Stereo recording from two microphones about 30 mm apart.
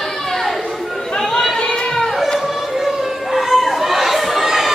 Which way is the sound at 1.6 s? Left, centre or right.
Left.